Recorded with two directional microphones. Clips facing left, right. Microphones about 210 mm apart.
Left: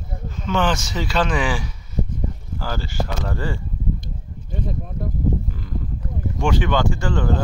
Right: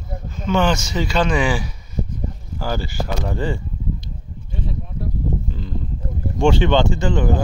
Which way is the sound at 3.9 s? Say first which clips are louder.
Left 1 dB; 50° left (ahead or behind).